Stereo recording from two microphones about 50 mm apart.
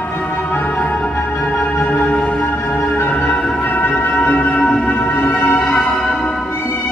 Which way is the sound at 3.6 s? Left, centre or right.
Left.